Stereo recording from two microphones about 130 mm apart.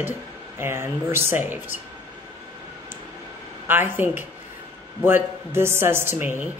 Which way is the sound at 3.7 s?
15° right (ahead or behind).